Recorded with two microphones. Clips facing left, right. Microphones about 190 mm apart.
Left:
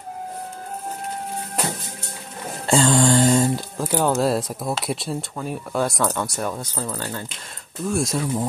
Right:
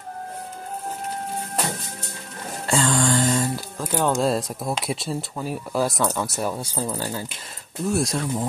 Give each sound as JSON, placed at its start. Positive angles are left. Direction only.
{"t": 2.6, "sound": "mantra", "side_deg": 25}
{"t": 3.7, "sound": "speech", "side_deg": 10}